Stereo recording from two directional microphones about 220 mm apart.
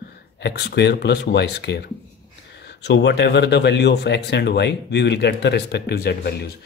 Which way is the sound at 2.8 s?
50° left (ahead or behind).